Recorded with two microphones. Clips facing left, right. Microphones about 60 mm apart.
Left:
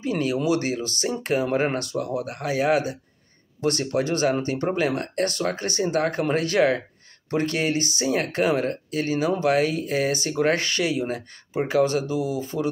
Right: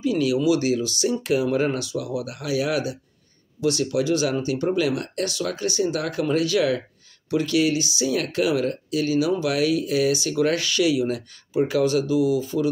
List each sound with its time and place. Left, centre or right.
0.0 s speech: left
8.1 s speech: left